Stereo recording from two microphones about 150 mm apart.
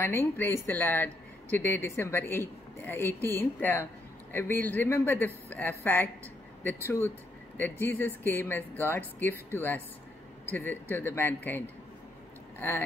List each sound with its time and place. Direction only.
0.0 s speech: 15° left (ahead or behind)